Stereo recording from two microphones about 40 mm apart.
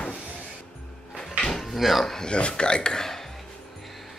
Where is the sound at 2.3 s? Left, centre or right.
Left.